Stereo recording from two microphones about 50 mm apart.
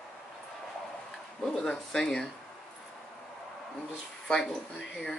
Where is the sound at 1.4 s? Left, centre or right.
Centre.